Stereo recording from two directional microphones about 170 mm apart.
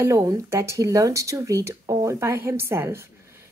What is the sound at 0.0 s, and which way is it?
A woman's voice, 15° right (ahead or behind).